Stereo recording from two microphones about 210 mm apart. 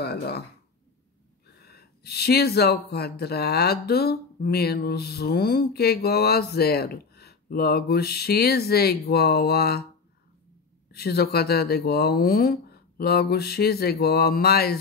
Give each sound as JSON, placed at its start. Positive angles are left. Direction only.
{"t": 0.0, "sound": "speech", "side_deg": 50}
{"t": 1.6, "sound": "speech", "side_deg": 50}
{"t": 10.9, "sound": "speech", "side_deg": 50}